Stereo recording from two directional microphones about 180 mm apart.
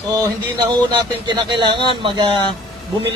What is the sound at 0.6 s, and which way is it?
A man's voice, 25° right (ahead or behind).